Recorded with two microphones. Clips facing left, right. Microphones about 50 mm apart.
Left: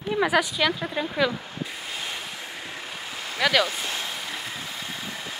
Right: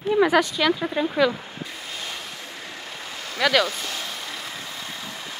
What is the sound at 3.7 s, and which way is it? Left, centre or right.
Speech, centre.